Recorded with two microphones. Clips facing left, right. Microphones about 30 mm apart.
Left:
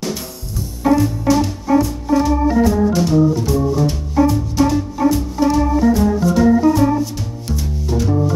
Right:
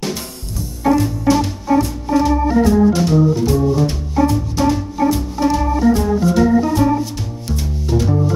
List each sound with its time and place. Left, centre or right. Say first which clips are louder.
0.6 s music: left 1 dB; centre
2.0 s organ: even; centre
4.1 s music: left 2 dB; centre